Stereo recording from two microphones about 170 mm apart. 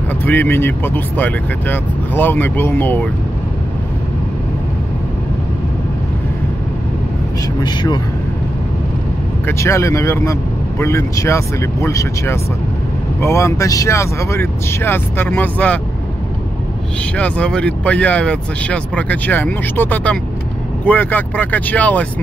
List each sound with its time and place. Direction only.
0.2 s speech: 10° left (ahead or behind)
7.6 s speech: 25° left (ahead or behind)
9.5 s speech: 15° left (ahead or behind)
17.2 s speech: 5° left (ahead or behind)